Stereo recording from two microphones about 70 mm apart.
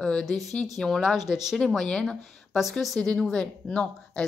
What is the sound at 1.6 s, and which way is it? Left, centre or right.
A woman's voice, centre.